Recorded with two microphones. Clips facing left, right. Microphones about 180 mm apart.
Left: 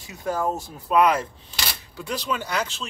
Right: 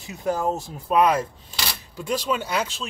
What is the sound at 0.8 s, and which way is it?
Speech, 30° right (ahead or behind).